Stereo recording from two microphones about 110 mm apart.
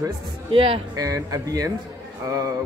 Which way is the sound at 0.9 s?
30° right (ahead or behind).